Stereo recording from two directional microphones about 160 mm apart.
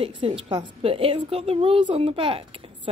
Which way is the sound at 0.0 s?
35° right (ahead or behind).